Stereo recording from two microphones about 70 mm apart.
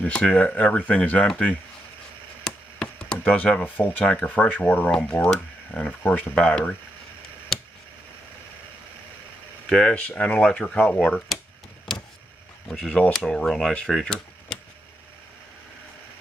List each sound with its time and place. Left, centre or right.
0.0 s speech: centre
2.4 s a sound: centre
4.0 s speech: centre
9.7 s speech: centre
9.9 s speech: centre
13.1 s speech: centre